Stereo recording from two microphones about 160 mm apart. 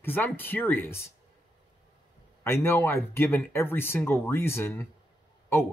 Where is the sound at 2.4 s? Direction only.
15° left (ahead or behind).